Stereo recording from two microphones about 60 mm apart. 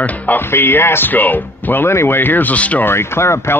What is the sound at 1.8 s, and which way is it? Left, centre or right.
A man's voice, left.